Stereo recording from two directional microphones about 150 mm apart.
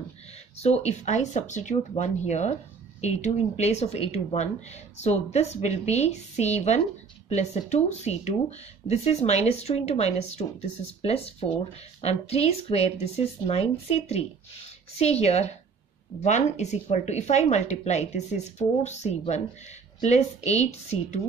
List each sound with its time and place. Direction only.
0.6 s speech: 50° left (ahead or behind)